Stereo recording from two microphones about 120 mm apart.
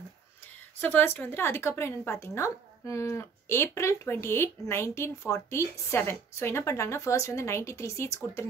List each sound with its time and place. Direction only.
0.7 s a woman's voice: 15° left (ahead or behind)